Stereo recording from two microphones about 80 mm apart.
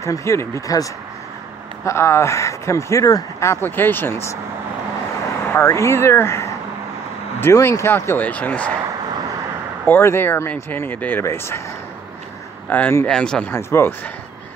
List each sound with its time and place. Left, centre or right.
0.0 s speech: left
1.9 s speech: left
3.4 s speech: left
5.6 s speech: left
7.5 s speech: left
8.3 s speech: centre
9.8 s speech: left
12.6 s speech: left
13.0 s speech: centre
13.5 s speech: left